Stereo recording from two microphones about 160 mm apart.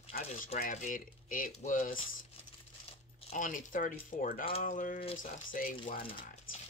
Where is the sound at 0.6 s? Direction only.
55° left (ahead or behind).